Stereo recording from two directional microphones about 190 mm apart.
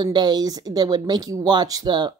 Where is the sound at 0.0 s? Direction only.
20° right (ahead or behind).